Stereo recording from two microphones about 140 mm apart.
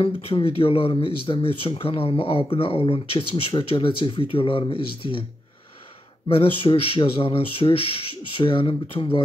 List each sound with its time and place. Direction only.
0.0 s speech: 40° left (ahead or behind)
6.2 s speech: 40° left (ahead or behind)